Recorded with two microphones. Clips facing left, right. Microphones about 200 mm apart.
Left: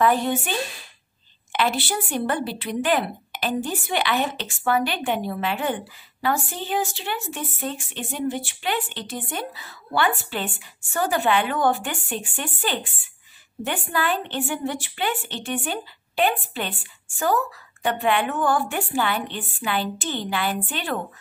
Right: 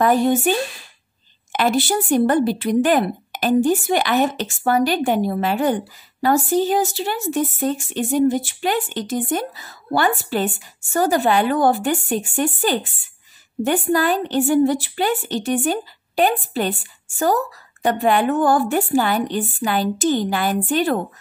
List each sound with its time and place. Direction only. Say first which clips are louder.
0.0 s a woman's voice: right 5 dB; 45° right (ahead or behind)